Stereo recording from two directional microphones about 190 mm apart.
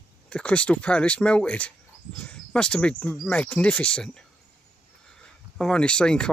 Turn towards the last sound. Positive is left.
turn(degrees=5)  # may be behind; listen again after turning